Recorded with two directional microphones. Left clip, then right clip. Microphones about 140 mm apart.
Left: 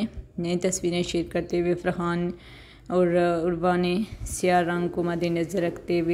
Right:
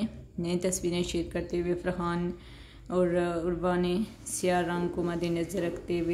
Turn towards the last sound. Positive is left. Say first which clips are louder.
# left 5 dB
turn(degrees=30)  # may be behind; listen again after turning